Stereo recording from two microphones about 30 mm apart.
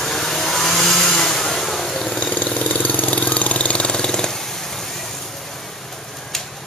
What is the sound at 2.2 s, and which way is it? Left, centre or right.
Engine, left.